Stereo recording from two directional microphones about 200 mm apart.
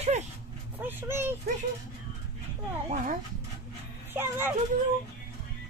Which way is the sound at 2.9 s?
40° right (ahead or behind).